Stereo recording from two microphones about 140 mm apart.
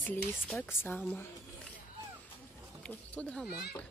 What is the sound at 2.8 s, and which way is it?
Speech, 5° left (ahead or behind).